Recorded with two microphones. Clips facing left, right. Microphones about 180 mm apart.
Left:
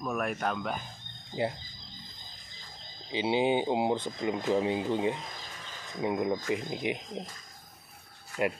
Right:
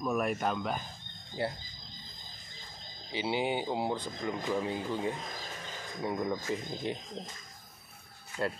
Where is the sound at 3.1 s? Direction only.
20° left (ahead or behind).